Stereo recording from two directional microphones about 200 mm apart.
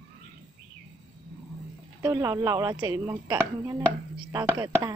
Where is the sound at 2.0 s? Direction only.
15° right (ahead or behind).